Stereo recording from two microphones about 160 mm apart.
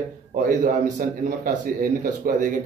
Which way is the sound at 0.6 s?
60° right (ahead or behind).